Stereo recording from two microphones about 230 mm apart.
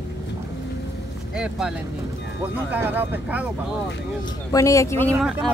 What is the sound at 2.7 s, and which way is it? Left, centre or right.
Speech, centre.